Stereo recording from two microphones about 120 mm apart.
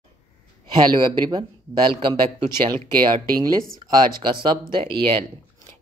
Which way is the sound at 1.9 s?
40° right (ahead or behind).